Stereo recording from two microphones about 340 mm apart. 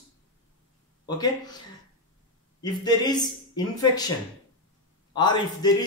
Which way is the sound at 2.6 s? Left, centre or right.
Centre.